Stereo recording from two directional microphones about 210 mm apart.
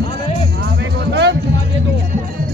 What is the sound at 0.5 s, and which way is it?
Music, 55° right (ahead or behind).